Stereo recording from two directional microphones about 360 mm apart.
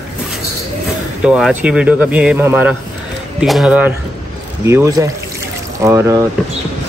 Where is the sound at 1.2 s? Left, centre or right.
Centre.